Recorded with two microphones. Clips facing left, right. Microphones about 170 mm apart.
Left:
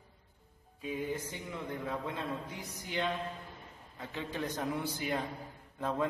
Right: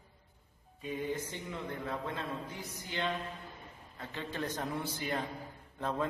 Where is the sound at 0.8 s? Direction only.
5° left (ahead or behind).